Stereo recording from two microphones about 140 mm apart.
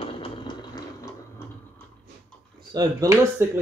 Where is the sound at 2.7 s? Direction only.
25° right (ahead or behind).